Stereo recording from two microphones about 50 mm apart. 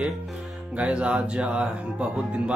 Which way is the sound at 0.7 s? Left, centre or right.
Right.